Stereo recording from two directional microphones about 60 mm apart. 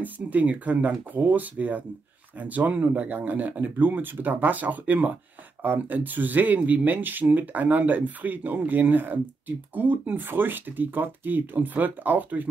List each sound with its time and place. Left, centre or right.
0.0 s speech: right